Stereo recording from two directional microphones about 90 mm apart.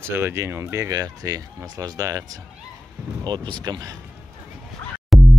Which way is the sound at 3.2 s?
55° right (ahead or behind).